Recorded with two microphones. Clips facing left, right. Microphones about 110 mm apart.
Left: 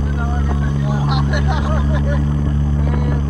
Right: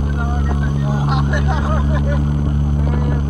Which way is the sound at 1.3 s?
20° left (ahead or behind).